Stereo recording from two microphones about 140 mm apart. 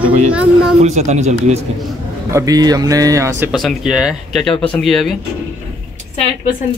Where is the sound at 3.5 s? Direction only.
Centre (ahead or behind).